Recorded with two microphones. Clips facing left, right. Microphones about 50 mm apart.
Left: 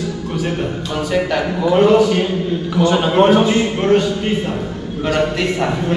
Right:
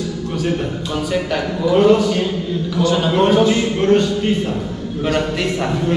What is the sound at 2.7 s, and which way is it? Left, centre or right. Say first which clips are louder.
A man's voice: left 2 dB; left.